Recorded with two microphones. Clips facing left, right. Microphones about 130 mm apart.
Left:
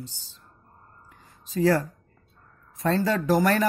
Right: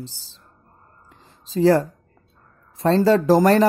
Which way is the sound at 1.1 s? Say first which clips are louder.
Right 7 dB; 30° right (ahead or behind).